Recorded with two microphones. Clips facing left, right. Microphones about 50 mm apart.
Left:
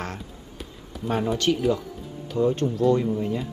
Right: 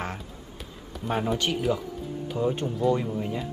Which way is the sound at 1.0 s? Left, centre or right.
Centre.